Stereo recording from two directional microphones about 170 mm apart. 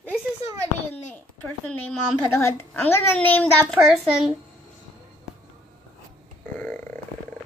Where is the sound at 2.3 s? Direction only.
15° left (ahead or behind).